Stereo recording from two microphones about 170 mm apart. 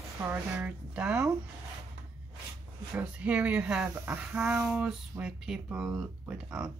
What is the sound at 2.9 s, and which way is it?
Speech, 10° right (ahead or behind).